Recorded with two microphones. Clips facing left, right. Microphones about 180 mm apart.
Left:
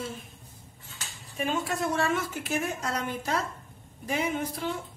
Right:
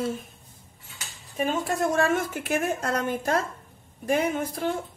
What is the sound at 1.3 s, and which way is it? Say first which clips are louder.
A woman's voice: right 4 dB; 45° right (ahead or behind).